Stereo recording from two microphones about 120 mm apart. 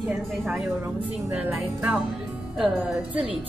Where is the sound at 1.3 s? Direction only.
10° right (ahead or behind).